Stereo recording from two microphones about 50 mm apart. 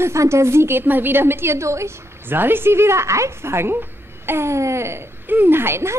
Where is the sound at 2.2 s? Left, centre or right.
Right.